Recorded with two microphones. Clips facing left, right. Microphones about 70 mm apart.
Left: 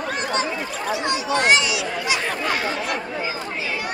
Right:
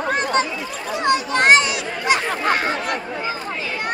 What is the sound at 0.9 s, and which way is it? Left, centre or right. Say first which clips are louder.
Children playing: right 5 dB; right.